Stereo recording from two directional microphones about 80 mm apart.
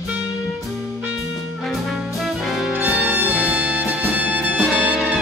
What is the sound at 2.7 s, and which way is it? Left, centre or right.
Music, right.